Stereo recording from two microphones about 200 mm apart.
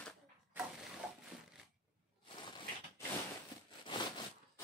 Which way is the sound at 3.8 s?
25° left (ahead or behind).